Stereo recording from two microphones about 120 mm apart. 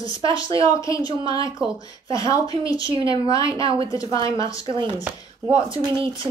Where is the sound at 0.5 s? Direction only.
25° left (ahead or behind).